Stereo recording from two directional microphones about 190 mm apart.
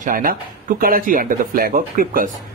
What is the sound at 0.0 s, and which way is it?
Speech, 45° right (ahead or behind).